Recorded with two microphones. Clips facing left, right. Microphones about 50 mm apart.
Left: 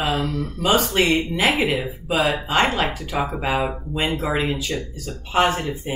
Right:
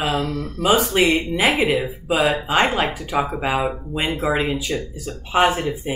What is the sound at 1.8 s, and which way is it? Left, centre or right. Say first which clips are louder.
Speech: right 2 dB; centre.